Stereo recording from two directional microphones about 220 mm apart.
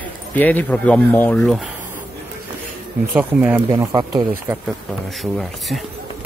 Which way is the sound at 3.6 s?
20° right (ahead or behind).